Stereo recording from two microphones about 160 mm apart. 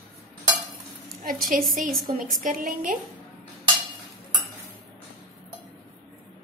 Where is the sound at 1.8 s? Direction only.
55° right (ahead or behind).